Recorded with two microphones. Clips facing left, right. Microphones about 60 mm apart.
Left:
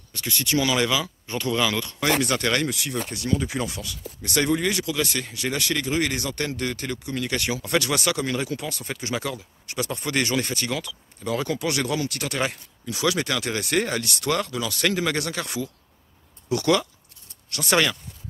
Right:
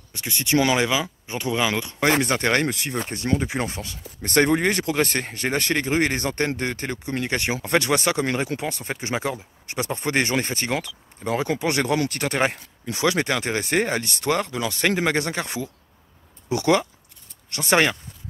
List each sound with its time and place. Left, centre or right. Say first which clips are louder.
0.1 s speech: right 2 dB; right